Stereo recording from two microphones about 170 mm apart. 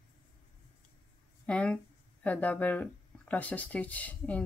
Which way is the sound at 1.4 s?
5° left (ahead or behind).